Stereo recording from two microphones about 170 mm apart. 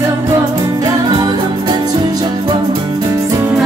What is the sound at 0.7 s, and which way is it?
Music, 25° right (ahead or behind).